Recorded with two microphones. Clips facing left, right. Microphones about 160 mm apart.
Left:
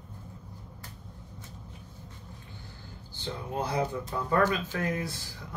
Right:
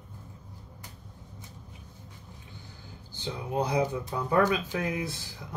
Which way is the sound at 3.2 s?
15° right (ahead or behind).